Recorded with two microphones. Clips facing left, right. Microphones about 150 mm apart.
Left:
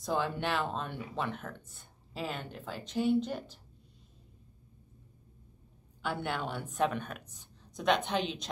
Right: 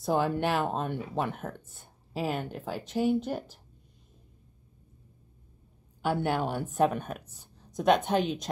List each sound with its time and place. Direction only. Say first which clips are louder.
0.0 s speech: right 5 dB; 45° right (ahead or behind)
6.0 s speech: right 7 dB; 45° right (ahead or behind)